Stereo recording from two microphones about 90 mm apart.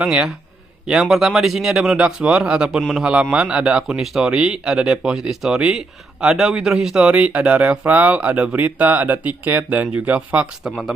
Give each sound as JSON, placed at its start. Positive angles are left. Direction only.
{"t": 0.0, "sound": "a man's voice", "side_deg": -5}
{"t": 3.1, "sound": "a man's voice", "side_deg": -15}